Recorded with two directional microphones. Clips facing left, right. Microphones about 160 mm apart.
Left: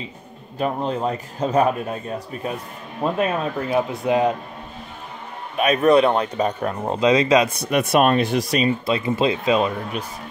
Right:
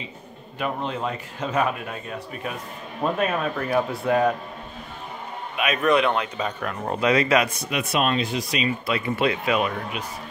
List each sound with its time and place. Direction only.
0.6 s a man's voice: 35° left (ahead or behind)
3.2 s speech: 20° left (ahead or behind)
5.6 s a man's voice: 35° left (ahead or behind)
6.8 s speech: 20° left (ahead or behind)
7.7 s speech: 50° left (ahead or behind)
8.8 s speech: 25° left (ahead or behind)